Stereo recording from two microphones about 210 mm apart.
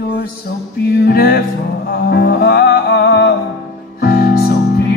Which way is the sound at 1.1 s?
45° left (ahead or behind).